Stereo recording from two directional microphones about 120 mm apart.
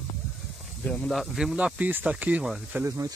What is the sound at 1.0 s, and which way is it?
Speech, centre (ahead or behind).